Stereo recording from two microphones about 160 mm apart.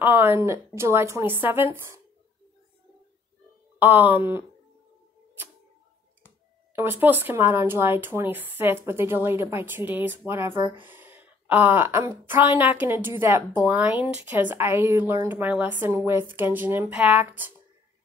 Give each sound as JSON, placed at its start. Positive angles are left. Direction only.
{"t": 0.0, "sound": "speech", "side_deg": -15}
{"t": 3.8, "sound": "speech", "side_deg": -10}
{"t": 6.7, "sound": "speech", "side_deg": -15}